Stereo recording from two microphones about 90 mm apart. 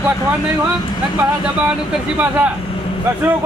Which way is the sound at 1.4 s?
10° right (ahead or behind).